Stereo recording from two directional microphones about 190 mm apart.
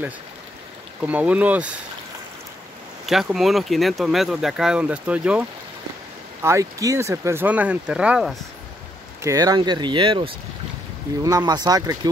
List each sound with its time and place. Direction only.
1.0 s speech: 5° right (ahead or behind)
3.1 s speech: centre (ahead or behind)
9.2 s speech: 20° right (ahead or behind)